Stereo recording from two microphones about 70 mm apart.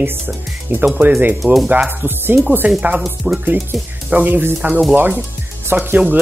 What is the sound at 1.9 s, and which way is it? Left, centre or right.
Speech, right.